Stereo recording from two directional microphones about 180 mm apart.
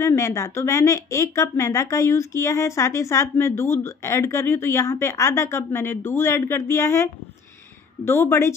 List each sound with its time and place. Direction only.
0.0 s speech: 15° left (ahead or behind)